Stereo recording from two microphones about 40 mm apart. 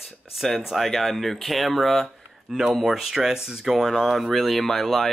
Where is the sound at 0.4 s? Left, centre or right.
Centre.